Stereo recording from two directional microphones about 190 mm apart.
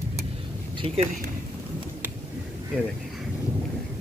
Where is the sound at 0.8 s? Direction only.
30° right (ahead or behind).